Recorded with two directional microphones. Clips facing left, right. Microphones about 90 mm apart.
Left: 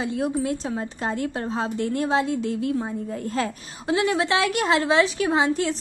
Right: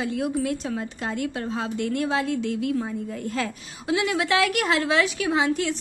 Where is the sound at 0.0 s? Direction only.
30° left (ahead or behind).